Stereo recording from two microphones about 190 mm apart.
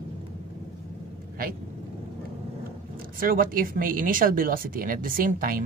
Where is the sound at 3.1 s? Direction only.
50° right (ahead or behind).